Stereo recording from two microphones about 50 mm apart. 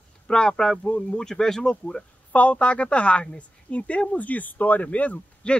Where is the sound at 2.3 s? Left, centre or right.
Left.